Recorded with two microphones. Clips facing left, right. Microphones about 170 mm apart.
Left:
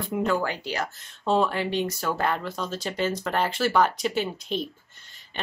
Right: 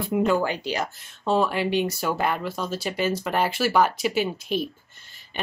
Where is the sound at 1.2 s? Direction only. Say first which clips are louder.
Right 1 dB; 5° right (ahead or behind).